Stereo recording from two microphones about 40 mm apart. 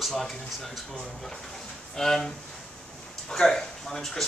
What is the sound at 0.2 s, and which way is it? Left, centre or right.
A man's voice, centre.